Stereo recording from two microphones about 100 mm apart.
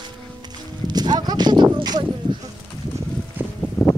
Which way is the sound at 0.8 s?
45° right (ahead or behind).